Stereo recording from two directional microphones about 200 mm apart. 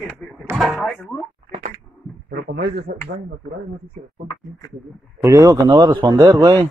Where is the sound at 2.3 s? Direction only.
55° right (ahead or behind).